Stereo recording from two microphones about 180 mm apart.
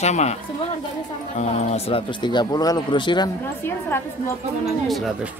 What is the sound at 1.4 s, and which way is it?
Speech, 35° left (ahead or behind).